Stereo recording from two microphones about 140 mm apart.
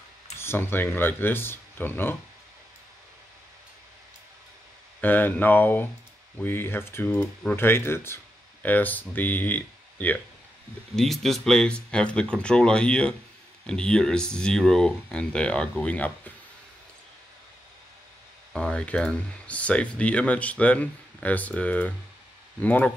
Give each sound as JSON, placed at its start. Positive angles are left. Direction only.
{"t": 0.4, "sound": "speech", "side_deg": 15}
{"t": 5.0, "sound": "speech", "side_deg": 15}
{"t": 11.0, "sound": "speech", "side_deg": 0}
{"t": 18.5, "sound": "speech", "side_deg": 5}